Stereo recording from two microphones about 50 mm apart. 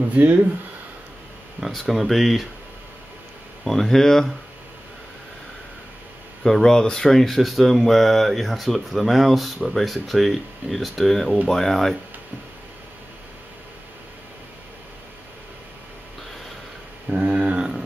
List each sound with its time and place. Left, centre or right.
0.1 s speech: right
1.7 s speech: centre
3.6 s speech: centre
6.4 s speech: centre
17.1 s a sound: right
17.6 s mantra: centre